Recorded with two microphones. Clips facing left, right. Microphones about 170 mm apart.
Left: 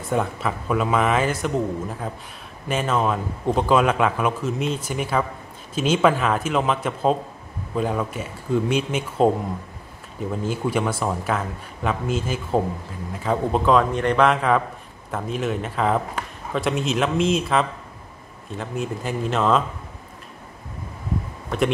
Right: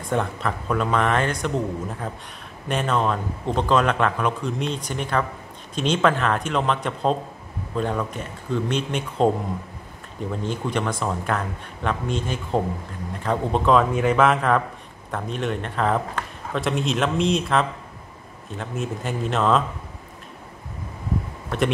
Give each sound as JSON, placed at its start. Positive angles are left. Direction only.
{"t": 0.1, "sound": "a man's voice", "side_deg": 5}
{"t": 10.3, "sound": "a man's voice", "side_deg": 5}
{"t": 21.5, "sound": "speech", "side_deg": 0}